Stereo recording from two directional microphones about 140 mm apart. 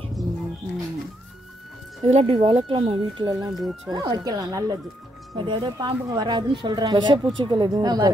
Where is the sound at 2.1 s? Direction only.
45° right (ahead or behind).